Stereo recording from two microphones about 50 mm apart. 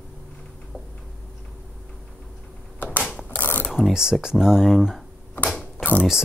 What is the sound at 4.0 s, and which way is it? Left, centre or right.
Speech, centre.